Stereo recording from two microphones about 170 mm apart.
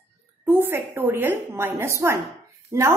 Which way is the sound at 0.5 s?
15° right (ahead or behind).